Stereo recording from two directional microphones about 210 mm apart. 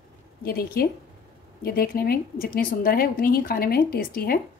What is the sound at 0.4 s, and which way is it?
A woman's voice, 45° left (ahead or behind).